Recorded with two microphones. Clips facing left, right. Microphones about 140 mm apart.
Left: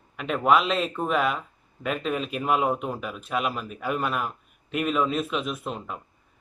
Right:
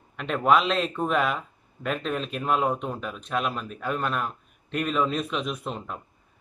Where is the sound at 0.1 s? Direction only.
5° left (ahead or behind).